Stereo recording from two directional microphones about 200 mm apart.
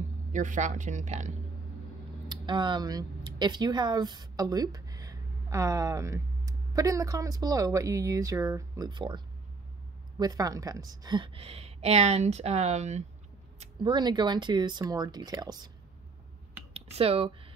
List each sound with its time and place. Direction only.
0.3 s speech: 40° right (ahead or behind)
2.2 s a woman's voice: 25° right (ahead or behind)
13.6 s a woman's voice: 20° right (ahead or behind)
16.7 s speech: 30° right (ahead or behind)